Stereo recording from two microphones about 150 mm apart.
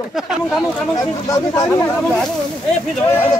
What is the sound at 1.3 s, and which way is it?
Speech, 25° left (ahead or behind).